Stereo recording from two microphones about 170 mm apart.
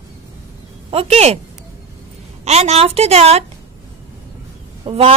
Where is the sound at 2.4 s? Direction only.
40° right (ahead or behind).